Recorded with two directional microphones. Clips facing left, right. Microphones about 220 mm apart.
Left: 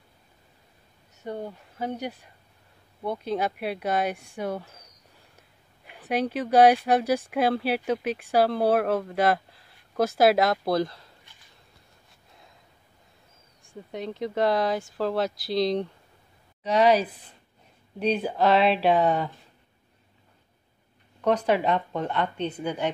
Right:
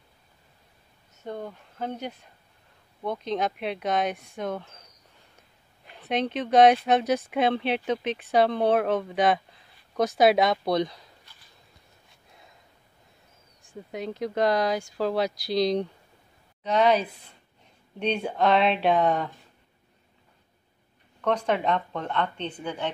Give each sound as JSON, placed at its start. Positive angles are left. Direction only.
{"t": 1.2, "sound": "speech", "side_deg": 10}
{"t": 5.9, "sound": "speech", "side_deg": 10}
{"t": 13.6, "sound": "speech", "side_deg": 0}
{"t": 21.5, "sound": "speech", "side_deg": 5}